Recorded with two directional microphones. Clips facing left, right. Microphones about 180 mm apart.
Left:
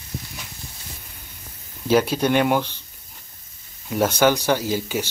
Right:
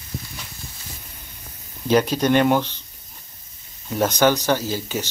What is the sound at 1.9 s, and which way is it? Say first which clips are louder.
Speech: right 1 dB; 10° left (ahead or behind).